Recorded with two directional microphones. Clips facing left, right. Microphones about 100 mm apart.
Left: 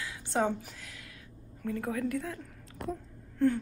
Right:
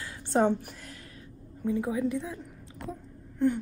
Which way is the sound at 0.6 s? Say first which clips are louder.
Right 3 dB; 50° right (ahead or behind).